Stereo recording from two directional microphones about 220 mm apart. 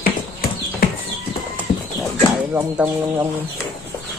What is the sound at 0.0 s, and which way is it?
Horse, 40° left (ahead or behind).